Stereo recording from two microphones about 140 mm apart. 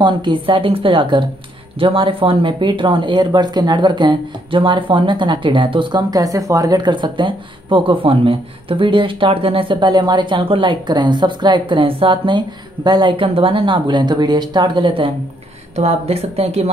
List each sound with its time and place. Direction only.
0.0 s speech: 35° right (ahead or behind)